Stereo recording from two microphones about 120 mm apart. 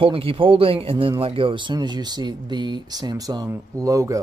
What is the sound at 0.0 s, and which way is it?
Speech, 50° right (ahead or behind).